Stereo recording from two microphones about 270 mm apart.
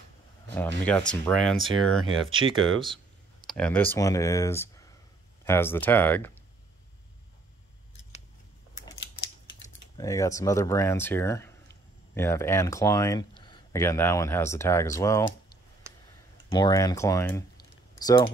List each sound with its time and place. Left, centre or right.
0.8 s speech: centre
2.0 s speech: centre
3.4 s speech: centre
9.9 s speech: centre
16.4 s speech: centre